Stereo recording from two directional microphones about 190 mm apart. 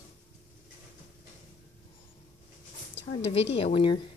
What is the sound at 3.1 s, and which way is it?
Speech, 30° left (ahead or behind).